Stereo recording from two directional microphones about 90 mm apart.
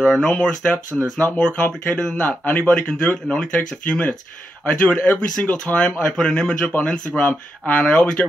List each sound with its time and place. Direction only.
0.0 s a man's voice: 10° left (ahead or behind)